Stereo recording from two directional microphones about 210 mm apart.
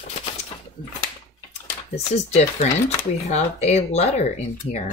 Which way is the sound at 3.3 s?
30° left (ahead or behind).